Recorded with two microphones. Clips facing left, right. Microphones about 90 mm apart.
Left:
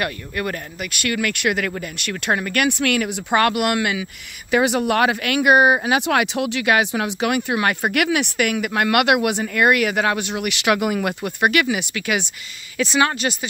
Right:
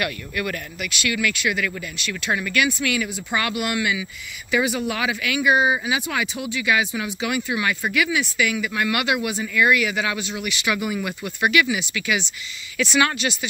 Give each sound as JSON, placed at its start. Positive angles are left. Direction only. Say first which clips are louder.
{"t": 0.0, "sound": "speech", "louder": "left 2 dB", "side_deg": 35}
{"t": 0.9, "sound": "speech", "louder": "left 1 dB", "side_deg": 50}
{"t": 2.3, "sound": "speech", "louder": "left 2 dB", "side_deg": 50}
{"t": 12.7, "sound": "speech", "louder": "left 2 dB", "side_deg": 35}